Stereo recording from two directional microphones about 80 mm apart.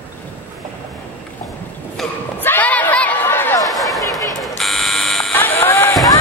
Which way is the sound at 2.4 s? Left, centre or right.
Left.